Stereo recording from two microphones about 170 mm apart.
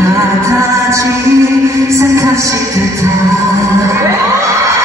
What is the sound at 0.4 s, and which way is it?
Music, 15° right (ahead or behind).